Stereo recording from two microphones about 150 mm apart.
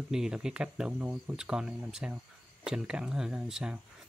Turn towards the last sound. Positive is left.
turn(degrees=-5)  # may be behind; listen again after turning